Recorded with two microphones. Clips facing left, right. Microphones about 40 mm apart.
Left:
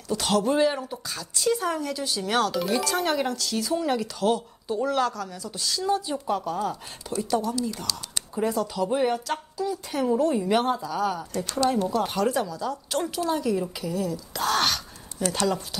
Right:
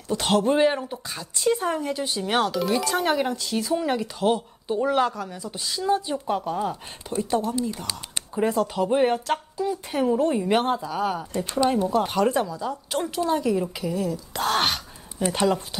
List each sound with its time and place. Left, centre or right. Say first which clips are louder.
0.1 s speech: right 2 dB; right
2.5 s speech: right 2 dB; centre
2.8 s speech: right 2 dB; centre
10.0 s speech: right 1 dB; centre